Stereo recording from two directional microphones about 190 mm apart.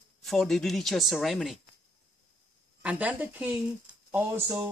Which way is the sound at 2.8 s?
10° right (ahead or behind).